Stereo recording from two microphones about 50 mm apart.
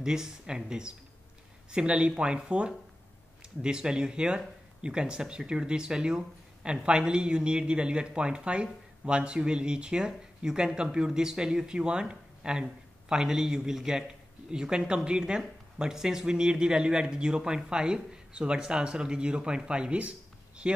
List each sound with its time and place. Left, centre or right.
0.0 s speech: centre